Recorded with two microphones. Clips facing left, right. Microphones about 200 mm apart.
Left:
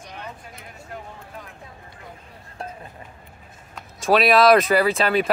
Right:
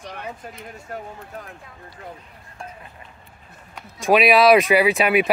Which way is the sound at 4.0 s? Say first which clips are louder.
Right 1 dB; 10° right (ahead or behind).